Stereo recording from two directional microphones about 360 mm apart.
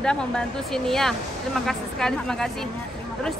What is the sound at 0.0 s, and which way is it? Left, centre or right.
Speech, centre.